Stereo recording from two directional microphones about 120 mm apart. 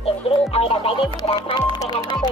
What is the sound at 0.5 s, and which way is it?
Music, 55° left (ahead or behind).